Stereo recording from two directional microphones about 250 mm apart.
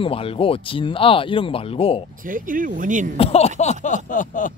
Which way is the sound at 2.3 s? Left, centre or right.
Right.